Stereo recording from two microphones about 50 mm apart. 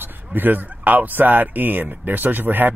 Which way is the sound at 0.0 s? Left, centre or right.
Right.